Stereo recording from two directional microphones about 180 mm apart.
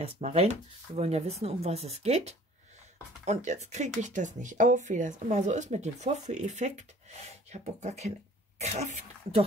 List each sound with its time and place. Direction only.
0.0 s speech: 35° right (ahead or behind)